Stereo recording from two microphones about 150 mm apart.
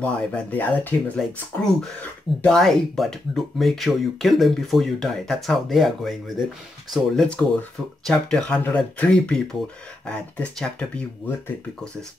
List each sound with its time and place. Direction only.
0.0 s speech: 10° left (ahead or behind)